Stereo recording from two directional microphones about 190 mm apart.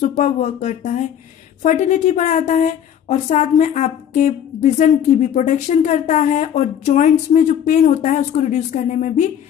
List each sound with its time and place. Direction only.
0.2 s a woman's voice: 40° left (ahead or behind)